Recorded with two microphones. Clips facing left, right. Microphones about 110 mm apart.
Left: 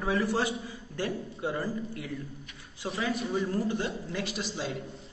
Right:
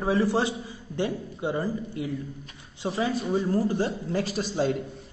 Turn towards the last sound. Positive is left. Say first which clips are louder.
# right 8 dB
turn(degrees=-45)  # may be behind; listen again after turning